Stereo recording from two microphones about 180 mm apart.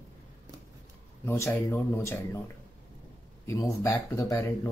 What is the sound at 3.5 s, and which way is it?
Speech, 20° left (ahead or behind).